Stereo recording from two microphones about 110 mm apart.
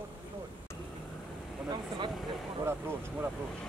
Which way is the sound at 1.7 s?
45° right (ahead or behind).